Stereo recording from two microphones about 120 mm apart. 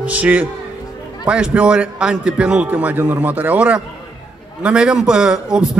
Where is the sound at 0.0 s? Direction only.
15° right (ahead or behind).